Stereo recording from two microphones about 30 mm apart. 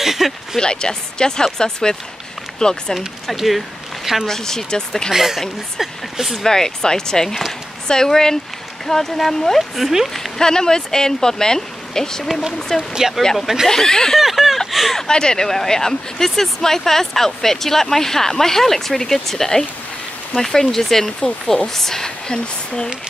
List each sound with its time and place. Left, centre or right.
0.0 s speech: centre
0.6 s speech: left
3.3 s a sound: centre
4.3 s speech: centre
5.1 s speech: centre
6.4 s speech: centre
9.6 s speech: centre
10.0 s speech: centre
10.4 s speech: left
14.2 s a sound: centre
15.0 s speech: left
15.4 s speech: centre
22.3 s speech: left